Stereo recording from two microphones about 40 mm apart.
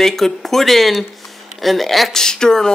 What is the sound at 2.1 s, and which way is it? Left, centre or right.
Speech, centre.